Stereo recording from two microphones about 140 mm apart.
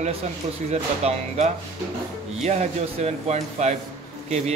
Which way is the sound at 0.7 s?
50° right (ahead or behind).